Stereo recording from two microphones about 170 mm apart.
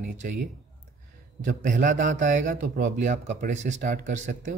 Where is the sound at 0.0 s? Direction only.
55° right (ahead or behind).